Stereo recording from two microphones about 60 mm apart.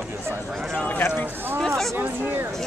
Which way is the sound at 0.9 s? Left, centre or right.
Left.